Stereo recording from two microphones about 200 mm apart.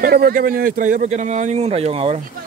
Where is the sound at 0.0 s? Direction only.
50° right (ahead or behind); by 2.2 s 30° right (ahead or behind).